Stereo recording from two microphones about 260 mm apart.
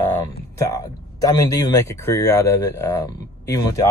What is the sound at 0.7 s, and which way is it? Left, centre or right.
Speech, centre.